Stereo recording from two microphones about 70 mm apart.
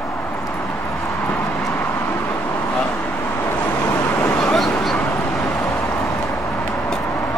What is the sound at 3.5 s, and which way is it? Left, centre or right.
Vehicle, left.